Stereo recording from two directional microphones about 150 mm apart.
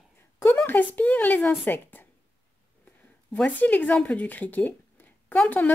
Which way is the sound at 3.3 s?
10° left (ahead or behind).